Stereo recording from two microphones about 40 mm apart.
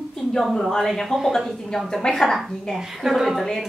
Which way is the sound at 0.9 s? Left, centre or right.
Centre.